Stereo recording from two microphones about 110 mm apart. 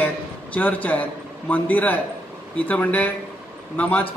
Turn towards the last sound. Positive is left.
turn(degrees=10)  # may be behind; listen again after turning